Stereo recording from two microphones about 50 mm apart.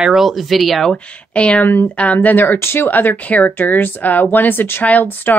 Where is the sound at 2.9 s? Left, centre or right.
Left.